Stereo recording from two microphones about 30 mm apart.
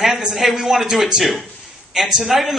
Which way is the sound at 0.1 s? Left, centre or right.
Centre.